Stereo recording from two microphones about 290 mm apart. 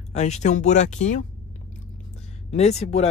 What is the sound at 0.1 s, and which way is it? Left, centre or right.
Speech, left.